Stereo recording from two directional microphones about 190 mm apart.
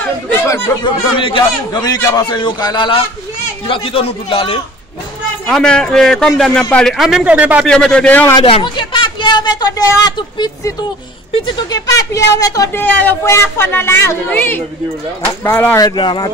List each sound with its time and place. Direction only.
0.0 s chatter: 10° left (ahead or behind)
0.8 s a man's voice: 25° left (ahead or behind)
5.5 s a man's voice: 5° left (ahead or behind)
7.6 s a man's voice: 5° left (ahead or behind)
8.4 s a man's voice: 25° left (ahead or behind)